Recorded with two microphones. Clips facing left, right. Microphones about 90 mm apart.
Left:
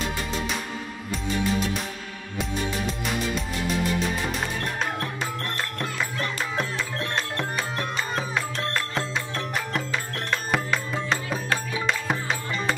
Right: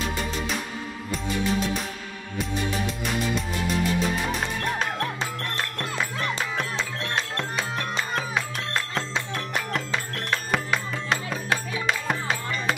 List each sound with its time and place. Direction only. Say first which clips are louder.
4.7 s music: right 1 dB; centre (ahead or behind)
7.2 s music: right 1 dB; centre (ahead or behind)